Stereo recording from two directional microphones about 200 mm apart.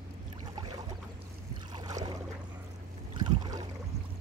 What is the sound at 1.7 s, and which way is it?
Boat, 20° right (ahead or behind).